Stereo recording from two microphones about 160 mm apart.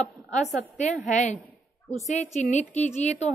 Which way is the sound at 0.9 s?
50° left (ahead or behind).